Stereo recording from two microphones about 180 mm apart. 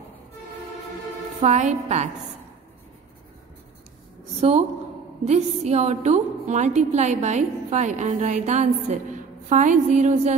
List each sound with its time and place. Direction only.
1.4 s a woman's voice: 40° right (ahead or behind)
4.4 s a woman's voice: 35° right (ahead or behind)